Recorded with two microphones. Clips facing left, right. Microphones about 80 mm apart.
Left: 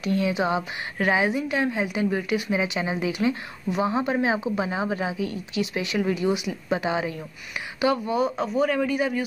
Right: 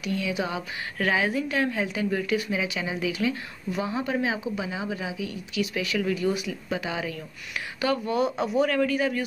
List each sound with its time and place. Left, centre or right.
0.0 s speech: left; by 2.5 s centre
2.5 s a woman's voice: left
5.6 s speech: left
6.8 s speech: left
7.8 s a man's voice: centre
8.3 s a man's voice: centre
8.6 s a man's voice: centre